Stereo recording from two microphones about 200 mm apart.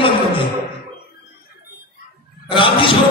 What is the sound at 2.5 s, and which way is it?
Speech, 25° left (ahead or behind).